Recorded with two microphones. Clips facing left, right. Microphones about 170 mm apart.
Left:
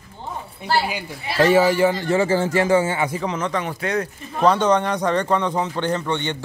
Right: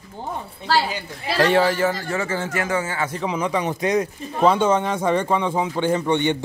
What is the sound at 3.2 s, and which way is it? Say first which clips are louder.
Speech: right 1 dB; 10° right (ahead or behind).